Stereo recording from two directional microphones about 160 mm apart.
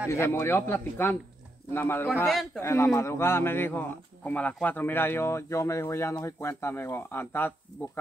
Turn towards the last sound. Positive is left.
turn(degrees=15)  # may be behind; listen again after turning